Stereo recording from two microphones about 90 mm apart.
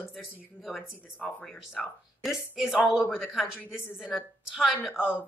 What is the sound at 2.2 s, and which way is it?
Speech, 5° right (ahead or behind).